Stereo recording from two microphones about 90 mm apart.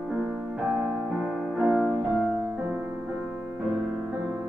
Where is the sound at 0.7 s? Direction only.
5° right (ahead or behind).